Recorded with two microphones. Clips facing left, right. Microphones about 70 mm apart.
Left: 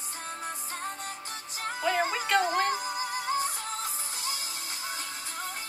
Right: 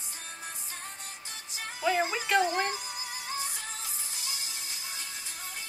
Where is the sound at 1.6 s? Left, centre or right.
Left.